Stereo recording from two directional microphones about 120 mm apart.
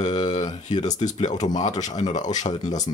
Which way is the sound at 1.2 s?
70° left (ahead or behind).